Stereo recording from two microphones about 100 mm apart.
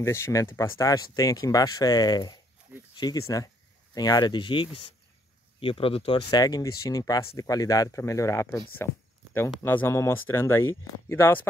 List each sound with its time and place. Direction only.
0.0 s speech: 30° left (ahead or behind); by 2.4 s 45° left (ahead or behind)
2.9 s a sound: 45° left (ahead or behind)
3.2 s speech: 35° left (ahead or behind); by 4.6 s 55° left (ahead or behind)
5.6 s speech: 65° left (ahead or behind)
6.3 s speech: 40° left (ahead or behind); by 11.4 s 25° left (ahead or behind)